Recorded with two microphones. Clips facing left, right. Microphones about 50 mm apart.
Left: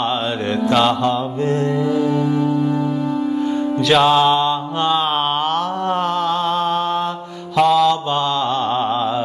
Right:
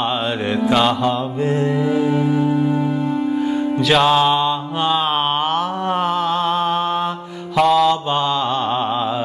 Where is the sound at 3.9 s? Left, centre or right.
Centre.